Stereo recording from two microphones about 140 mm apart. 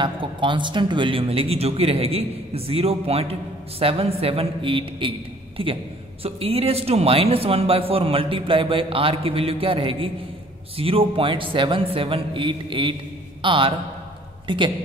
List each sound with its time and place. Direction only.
0.0 s a man's voice: 35° right (ahead or behind)